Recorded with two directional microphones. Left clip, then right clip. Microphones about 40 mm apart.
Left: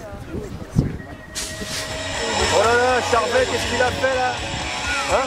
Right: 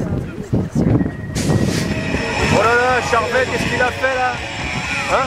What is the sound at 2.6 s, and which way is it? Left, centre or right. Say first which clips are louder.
Vehicle: right 3 dB; right.